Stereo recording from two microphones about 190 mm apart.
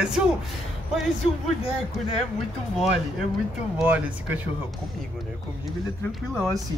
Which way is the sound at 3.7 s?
5° right (ahead or behind).